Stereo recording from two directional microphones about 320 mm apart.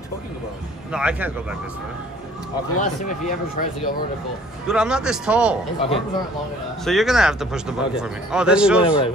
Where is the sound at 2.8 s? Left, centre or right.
Left.